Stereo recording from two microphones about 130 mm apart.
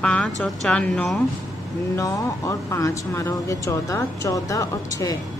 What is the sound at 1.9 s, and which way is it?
Speech, 25° left (ahead or behind).